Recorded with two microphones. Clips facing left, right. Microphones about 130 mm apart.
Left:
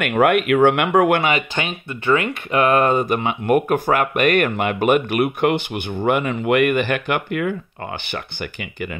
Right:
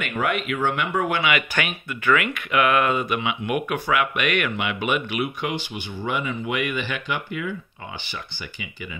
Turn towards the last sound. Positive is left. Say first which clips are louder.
# left 7 dB
turn(degrees=55)  # may be behind; listen again after turning